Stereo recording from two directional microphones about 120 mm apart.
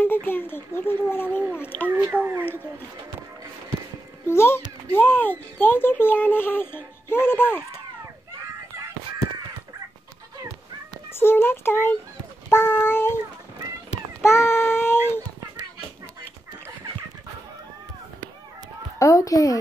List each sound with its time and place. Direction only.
0.0 s speech: 15° left (ahead or behind)
2.0 s a sound: 15° right (ahead or behind)
4.3 s speech: 20° left (ahead or behind)
11.1 s speech: 20° left (ahead or behind)
14.2 s child singing: 20° left (ahead or behind)
18.9 s speech: 25° left (ahead or behind)